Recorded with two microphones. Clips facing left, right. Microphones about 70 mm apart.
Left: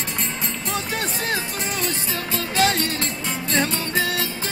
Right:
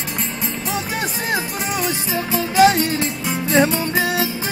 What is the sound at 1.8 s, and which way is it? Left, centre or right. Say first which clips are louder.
Music: right 7 dB; centre.